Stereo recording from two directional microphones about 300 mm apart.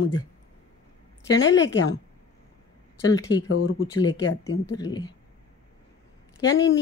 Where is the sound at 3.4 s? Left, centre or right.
Left.